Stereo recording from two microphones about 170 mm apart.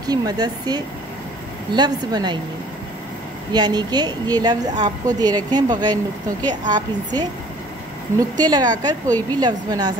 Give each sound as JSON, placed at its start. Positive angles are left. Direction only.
{"t": 0.0, "sound": "a woman's voice", "side_deg": -20}
{"t": 3.5, "sound": "a woman's voice", "side_deg": -25}